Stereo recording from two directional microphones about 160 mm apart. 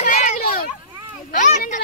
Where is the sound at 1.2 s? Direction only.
55° left (ahead or behind).